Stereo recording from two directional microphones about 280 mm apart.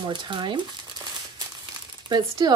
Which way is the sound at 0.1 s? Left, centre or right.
Centre.